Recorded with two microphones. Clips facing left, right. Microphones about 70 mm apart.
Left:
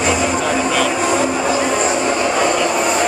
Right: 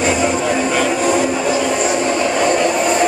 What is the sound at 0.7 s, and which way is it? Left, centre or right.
Vehicle, right.